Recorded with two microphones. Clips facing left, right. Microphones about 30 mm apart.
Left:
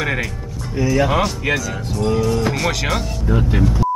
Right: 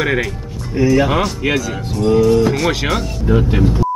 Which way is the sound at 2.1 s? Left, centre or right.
Centre.